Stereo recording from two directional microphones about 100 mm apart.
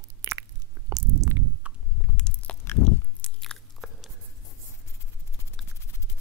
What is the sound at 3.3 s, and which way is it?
Biting, centre (ahead or behind).